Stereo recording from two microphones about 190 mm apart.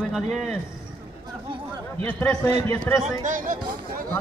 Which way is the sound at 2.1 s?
10° left (ahead or behind).